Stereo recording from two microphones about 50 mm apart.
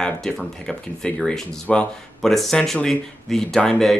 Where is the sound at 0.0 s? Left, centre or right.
Centre.